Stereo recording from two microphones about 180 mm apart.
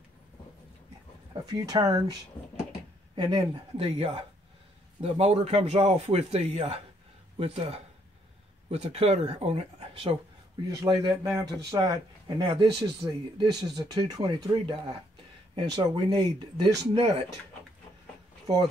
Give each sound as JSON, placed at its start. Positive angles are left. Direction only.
{"t": 1.3, "sound": "speech", "side_deg": -20}
{"t": 2.4, "sound": "a sound", "side_deg": 5}
{"t": 3.2, "sound": "speech", "side_deg": -25}